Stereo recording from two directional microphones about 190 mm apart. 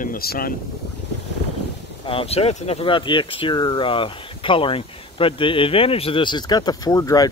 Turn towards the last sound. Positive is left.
turn(degrees=20)  # may be behind; listen again after turning